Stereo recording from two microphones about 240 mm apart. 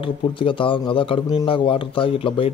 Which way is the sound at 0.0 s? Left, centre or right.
Left.